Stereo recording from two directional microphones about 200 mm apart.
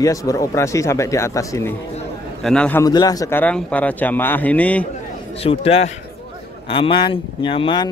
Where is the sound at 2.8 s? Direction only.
20° left (ahead or behind).